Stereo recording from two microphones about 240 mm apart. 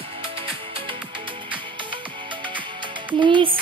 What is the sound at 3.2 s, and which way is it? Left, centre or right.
Music, right.